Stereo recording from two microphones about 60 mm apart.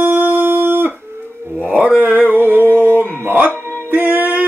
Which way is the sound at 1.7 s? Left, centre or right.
Right.